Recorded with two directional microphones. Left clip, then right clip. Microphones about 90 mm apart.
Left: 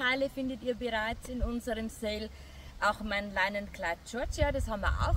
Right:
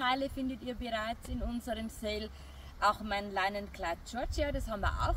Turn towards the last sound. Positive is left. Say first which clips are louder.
# left 2 dB
turn(degrees=30)  # may be behind; listen again after turning